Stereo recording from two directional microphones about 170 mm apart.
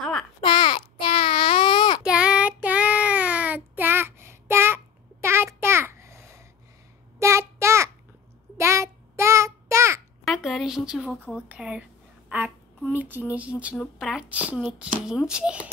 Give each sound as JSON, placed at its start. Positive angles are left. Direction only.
{"t": 0.0, "sound": "babbling", "side_deg": 5}
{"t": 0.4, "sound": "baby cry", "side_deg": 30}
{"t": 2.0, "sound": "child singing", "side_deg": -5}
{"t": 10.2, "sound": "a woman's voice", "side_deg": 0}
{"t": 11.4, "sound": "speech", "side_deg": -10}